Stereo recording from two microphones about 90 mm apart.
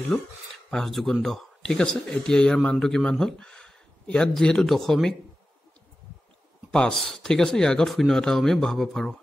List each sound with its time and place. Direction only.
0.7 s speech: 5° left (ahead or behind)
6.7 s speech: 5° left (ahead or behind)